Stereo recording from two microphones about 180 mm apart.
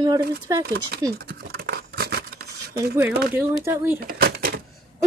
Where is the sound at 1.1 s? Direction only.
60° right (ahead or behind).